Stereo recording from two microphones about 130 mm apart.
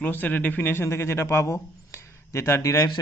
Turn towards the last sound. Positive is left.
turn(degrees=25)  # may be behind; listen again after turning